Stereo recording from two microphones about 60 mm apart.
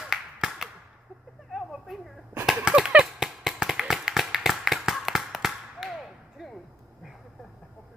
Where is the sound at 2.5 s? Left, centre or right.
Centre.